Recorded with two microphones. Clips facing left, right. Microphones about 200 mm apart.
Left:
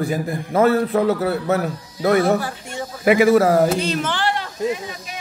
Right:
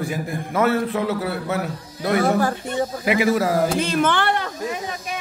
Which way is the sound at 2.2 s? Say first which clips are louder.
Even; 45° right (ahead or behind).